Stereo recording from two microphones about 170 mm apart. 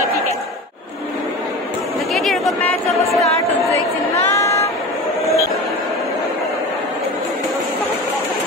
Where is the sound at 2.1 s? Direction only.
Centre (ahead or behind).